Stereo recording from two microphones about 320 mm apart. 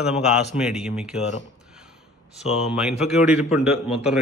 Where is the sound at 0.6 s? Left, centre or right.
Centre.